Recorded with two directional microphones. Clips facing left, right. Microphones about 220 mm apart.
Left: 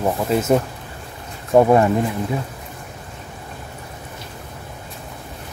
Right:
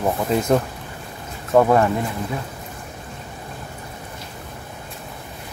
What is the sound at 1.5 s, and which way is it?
Speech, 15° left (ahead or behind).